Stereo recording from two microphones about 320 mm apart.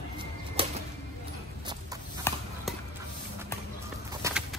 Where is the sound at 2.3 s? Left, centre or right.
Centre.